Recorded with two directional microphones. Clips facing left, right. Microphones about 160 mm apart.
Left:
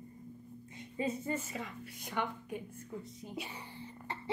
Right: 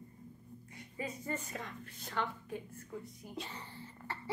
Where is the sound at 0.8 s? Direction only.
25° left (ahead or behind).